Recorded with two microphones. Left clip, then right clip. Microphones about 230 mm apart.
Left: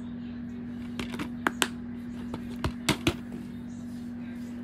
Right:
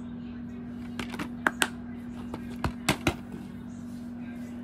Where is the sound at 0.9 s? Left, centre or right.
Centre.